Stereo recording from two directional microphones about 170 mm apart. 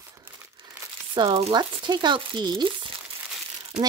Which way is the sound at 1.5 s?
25° right (ahead or behind).